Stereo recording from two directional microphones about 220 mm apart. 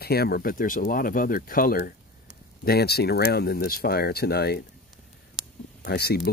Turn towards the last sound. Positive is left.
turn(degrees=45)  # may be behind; listen again after turning